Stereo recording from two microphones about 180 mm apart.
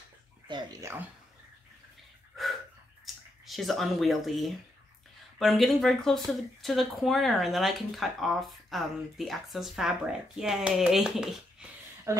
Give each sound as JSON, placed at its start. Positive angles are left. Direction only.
{"t": 0.5, "sound": "speech", "side_deg": -25}
{"t": 3.4, "sound": "speech", "side_deg": 0}
{"t": 12.1, "sound": "speech", "side_deg": -15}